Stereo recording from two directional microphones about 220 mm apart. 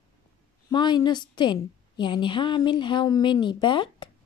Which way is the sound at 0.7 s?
20° left (ahead or behind).